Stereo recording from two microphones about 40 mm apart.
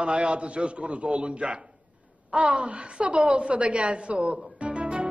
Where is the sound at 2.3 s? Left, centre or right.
Right.